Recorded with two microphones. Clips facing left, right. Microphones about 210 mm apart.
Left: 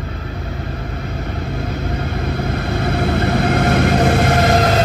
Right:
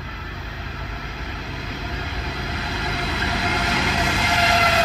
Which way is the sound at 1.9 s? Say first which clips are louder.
Left 9 dB; 55° left (ahead or behind).